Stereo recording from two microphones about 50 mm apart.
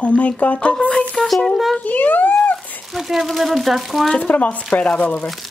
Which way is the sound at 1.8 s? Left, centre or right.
Left.